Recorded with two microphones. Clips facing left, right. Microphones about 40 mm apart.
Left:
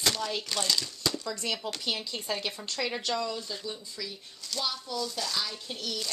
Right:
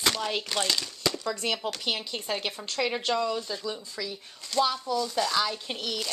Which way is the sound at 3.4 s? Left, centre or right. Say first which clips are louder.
Right 4 dB; right.